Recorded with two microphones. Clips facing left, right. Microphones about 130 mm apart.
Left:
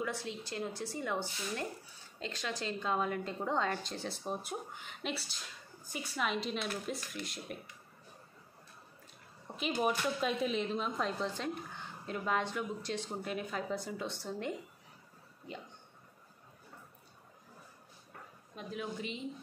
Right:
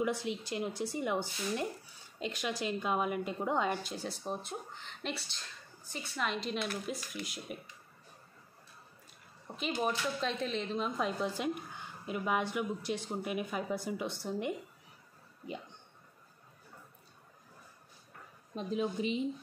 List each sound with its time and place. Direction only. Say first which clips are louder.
0.0 s a woman's voice: right 5 dB; 15° right (ahead or behind)
9.6 s a woman's voice: left 1 dB; 10° left (ahead or behind); by 14.5 s 10° right (ahead or behind)
18.5 s speech: right 7 dB; 25° right (ahead or behind)